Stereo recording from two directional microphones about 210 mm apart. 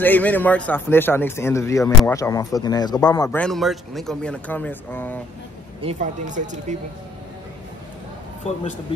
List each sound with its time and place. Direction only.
0.0 s a man's voice: 10° left (ahead or behind)
3.3 s speech: 5° left (ahead or behind)
5.8 s speech: 30° right (ahead or behind)